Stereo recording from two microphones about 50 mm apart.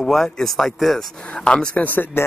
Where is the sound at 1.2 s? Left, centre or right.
Left.